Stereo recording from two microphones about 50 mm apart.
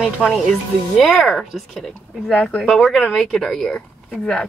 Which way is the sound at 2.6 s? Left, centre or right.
Centre.